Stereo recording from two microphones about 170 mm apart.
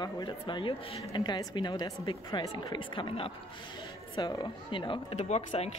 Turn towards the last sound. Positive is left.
turn(degrees=40)  # may be behind; listen again after turning